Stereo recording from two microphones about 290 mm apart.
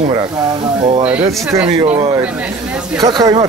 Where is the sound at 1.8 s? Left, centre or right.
Right.